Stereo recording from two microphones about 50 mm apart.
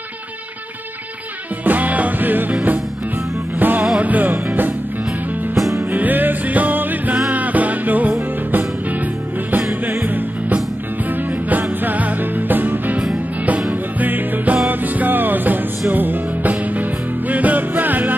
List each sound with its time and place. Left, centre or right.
1.6 s music: right
3.5 s music: right
5.9 s music: right
9.5 s music: right